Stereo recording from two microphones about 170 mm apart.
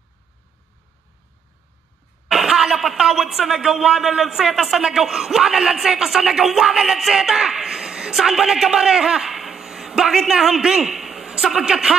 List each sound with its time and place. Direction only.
2.2 s speech: 5° right (ahead or behind)